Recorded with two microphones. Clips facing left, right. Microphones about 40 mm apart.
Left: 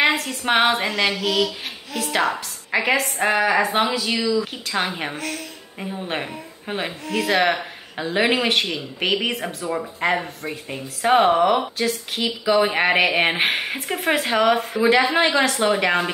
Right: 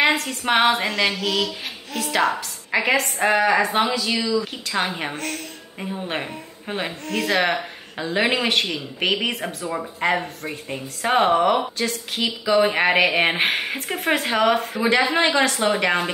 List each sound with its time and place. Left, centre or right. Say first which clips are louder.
0.0 s speech: even; centre